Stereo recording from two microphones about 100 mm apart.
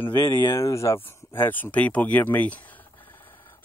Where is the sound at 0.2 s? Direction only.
40° left (ahead or behind).